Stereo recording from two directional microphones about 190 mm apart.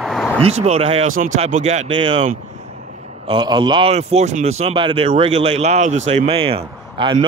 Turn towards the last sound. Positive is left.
turn(degrees=-25)  # may be behind; listen again after turning